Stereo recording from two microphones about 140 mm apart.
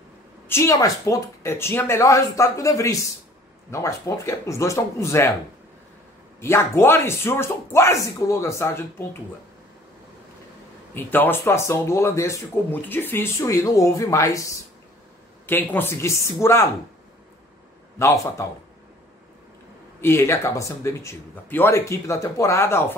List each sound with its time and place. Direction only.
0.5 s speech: 20° left (ahead or behind)
6.4 s speech: 20° left (ahead or behind)
11.0 s speech: 15° left (ahead or behind)
17.9 s speech: 20° left (ahead or behind)
20.0 s speech: 15° left (ahead or behind)